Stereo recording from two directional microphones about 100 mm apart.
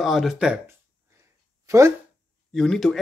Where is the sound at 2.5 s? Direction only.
5° left (ahead or behind).